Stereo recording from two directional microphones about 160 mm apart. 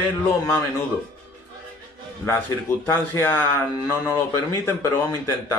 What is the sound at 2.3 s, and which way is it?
Speech, 15° left (ahead or behind).